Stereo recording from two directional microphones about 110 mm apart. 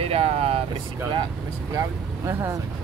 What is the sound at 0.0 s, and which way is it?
Vehicle, 65° right (ahead or behind).